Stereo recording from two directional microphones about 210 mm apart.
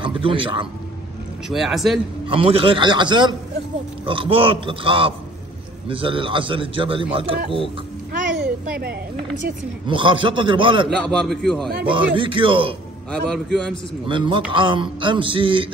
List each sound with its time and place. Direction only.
0.0 s a man's voice: 25° right (ahead or behind)
1.5 s a man's voice: centre (ahead or behind)
2.2 s a man's voice: 25° right (ahead or behind)
9.8 s a man's voice: 25° right (ahead or behind)
11.1 s a man's voice: 5° left (ahead or behind)
11.8 s a man's voice: 25° right (ahead or behind)
13.1 s a man's voice: 5° left (ahead or behind)
14.0 s a man's voice: 25° right (ahead or behind)